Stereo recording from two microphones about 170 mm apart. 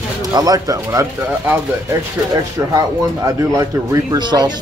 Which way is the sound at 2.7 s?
20° right (ahead or behind).